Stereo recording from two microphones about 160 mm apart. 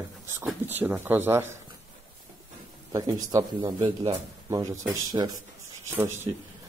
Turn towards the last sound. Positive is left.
turn(degrees=-15)  # may be behind; listen again after turning